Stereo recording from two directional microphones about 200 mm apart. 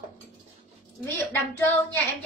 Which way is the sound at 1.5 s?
10° left (ahead or behind).